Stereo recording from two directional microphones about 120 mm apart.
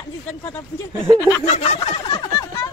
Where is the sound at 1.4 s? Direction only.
65° left (ahead or behind).